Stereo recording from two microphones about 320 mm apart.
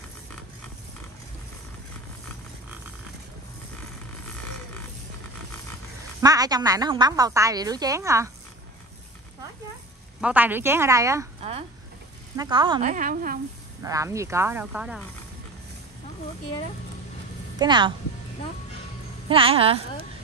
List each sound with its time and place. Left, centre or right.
6.2 s a woman's voice: centre
10.2 s a woman's voice: centre; by 13.4 s right
13.8 s a woman's voice: centre
17.6 s a woman's voice: centre
19.2 s a woman's voice: centre